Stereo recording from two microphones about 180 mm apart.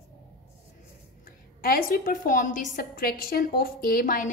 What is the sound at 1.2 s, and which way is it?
A woman's voice, 55° left (ahead or behind).